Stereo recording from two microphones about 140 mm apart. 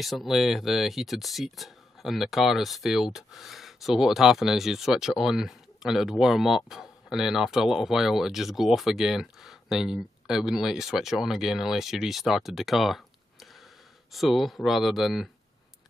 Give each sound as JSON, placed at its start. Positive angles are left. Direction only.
{"t": 0.0, "sound": "speech", "side_deg": 0}